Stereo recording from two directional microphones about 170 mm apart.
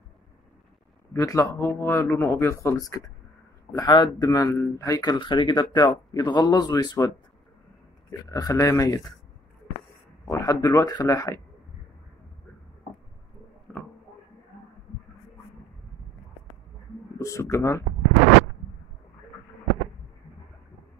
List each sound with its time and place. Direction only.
1.1 s speech: 20° left (ahead or behind)
8.1 s speech: 20° left (ahead or behind)
10.2 s speech: 20° left (ahead or behind)
17.2 s speech: 15° left (ahead or behind)